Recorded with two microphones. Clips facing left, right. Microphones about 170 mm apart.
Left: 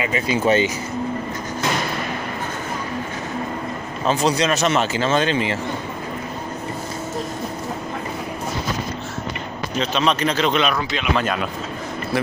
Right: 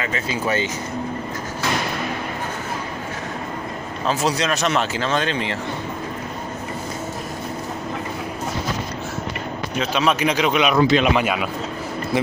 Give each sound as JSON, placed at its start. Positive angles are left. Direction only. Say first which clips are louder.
{"t": 0.0, "sound": "speech", "louder": "left 4 dB", "side_deg": 15}
{"t": 4.0, "sound": "speech", "louder": "left 2 dB", "side_deg": 0}
{"t": 9.8, "sound": "speech", "louder": "even", "side_deg": -10}
{"t": 10.8, "sound": "speech", "louder": "right 10 dB", "side_deg": -35}
{"t": 11.1, "sound": "speech", "louder": "right 1 dB", "side_deg": -10}